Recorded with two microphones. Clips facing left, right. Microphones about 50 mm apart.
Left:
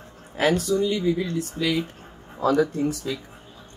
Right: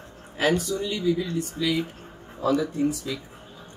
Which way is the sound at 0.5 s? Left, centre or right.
Left.